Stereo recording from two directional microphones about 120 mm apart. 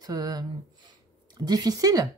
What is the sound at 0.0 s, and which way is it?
A woman's voice, 35° right (ahead or behind).